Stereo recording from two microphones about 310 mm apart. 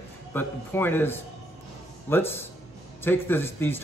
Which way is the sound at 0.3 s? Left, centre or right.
Centre.